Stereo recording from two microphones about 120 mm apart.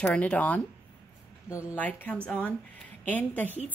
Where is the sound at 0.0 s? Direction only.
10° left (ahead or behind).